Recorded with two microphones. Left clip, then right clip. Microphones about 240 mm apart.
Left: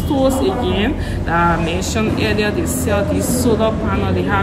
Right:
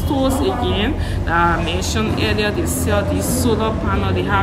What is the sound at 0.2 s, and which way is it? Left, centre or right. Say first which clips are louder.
A woman's voice: left 3 dB; centre.